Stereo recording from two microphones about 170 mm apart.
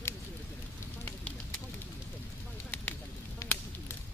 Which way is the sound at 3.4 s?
15° left (ahead or behind).